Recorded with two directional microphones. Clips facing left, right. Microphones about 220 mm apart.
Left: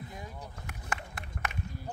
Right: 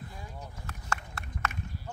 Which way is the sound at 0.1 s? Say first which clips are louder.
Left 1 dB; 20° left (ahead or behind).